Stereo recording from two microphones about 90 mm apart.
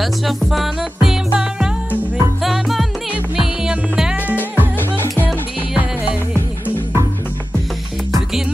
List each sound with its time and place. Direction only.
0.0 s music: centre (ahead or behind)